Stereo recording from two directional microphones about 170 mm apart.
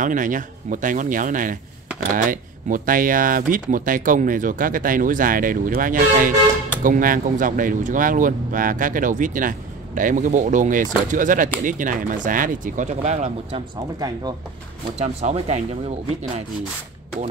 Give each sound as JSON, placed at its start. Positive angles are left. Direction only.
{"t": 0.0, "sound": "speech", "side_deg": -50}
{"t": 13.9, "sound": "speech", "side_deg": -25}
{"t": 15.0, "sound": "speech", "side_deg": -40}